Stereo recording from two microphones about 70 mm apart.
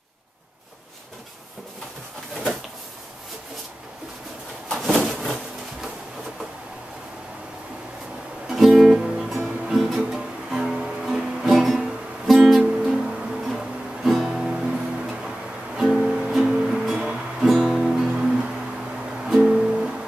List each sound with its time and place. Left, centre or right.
4.6 s a sound: centre
8.5 s music: centre
19.4 s music: centre